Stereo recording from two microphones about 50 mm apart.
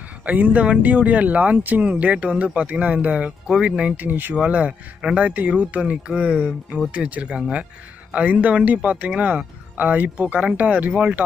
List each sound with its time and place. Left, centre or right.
0.2 s speech: right
4.0 s speech: right
4.4 s speech: right